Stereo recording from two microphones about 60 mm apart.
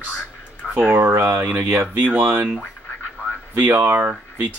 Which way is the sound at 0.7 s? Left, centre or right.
Right.